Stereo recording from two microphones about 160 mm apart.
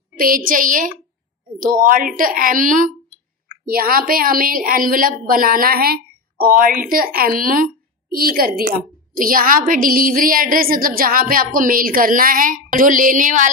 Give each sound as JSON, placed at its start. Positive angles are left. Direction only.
{"t": 0.2, "sound": "a woman's voice", "side_deg": -60}